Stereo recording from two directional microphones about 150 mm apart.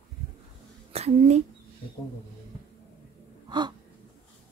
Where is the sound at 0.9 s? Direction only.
45° right (ahead or behind).